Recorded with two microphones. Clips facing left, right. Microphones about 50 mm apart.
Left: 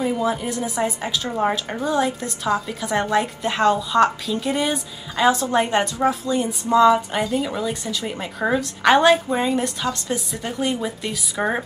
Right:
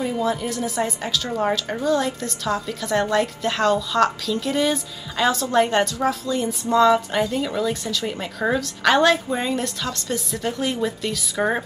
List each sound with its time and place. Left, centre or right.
0.0 s a woman's voice: centre